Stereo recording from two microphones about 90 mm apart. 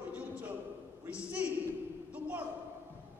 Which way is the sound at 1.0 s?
15° right (ahead or behind).